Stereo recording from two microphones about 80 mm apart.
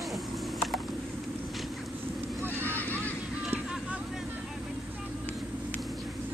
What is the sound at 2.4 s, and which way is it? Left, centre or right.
Honk, right.